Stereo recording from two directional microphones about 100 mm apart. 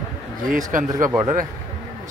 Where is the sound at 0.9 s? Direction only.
35° right (ahead or behind).